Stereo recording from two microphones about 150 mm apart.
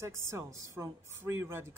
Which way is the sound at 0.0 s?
20° right (ahead or behind).